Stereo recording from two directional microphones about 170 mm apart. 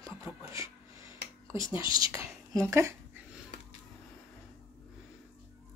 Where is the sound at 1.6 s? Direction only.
30° left (ahead or behind).